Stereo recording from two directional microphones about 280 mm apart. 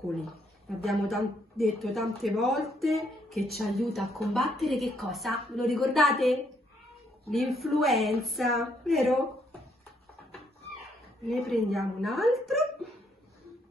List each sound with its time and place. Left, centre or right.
0.7 s a woman's voice: centre
11.4 s a woman's voice: centre